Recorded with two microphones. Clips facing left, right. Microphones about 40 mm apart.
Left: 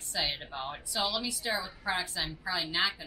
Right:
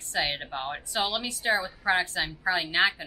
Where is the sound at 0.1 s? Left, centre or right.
Right.